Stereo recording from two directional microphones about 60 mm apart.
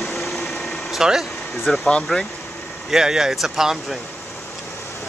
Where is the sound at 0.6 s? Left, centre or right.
Centre.